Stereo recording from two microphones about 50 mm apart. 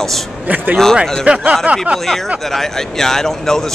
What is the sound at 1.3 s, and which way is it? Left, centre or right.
Speech, right.